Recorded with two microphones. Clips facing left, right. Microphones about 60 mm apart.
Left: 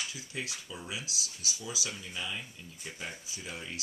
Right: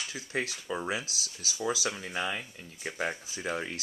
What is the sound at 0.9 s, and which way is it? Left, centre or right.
Speech, right.